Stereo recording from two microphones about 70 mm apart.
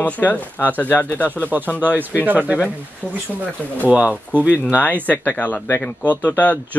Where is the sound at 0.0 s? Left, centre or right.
Left.